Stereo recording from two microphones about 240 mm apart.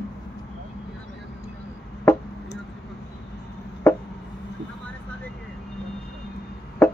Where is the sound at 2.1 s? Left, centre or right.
Centre.